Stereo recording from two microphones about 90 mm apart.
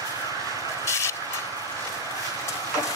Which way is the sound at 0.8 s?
30° left (ahead or behind).